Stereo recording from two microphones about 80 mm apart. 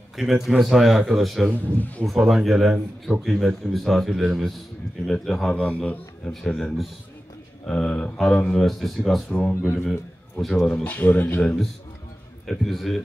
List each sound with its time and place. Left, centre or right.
0.1 s speech: centre
1.8 s speech: left
2.0 s speech: centre
5.6 s speech: centre
7.7 s speech: centre
9.3 s a man's voice: centre
10.8 s speech: left
12.4 s speech: centre